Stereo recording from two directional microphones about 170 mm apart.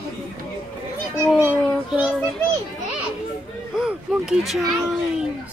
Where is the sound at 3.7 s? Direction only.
5° right (ahead or behind).